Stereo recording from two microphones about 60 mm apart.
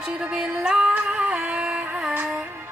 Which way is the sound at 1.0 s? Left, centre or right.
Centre.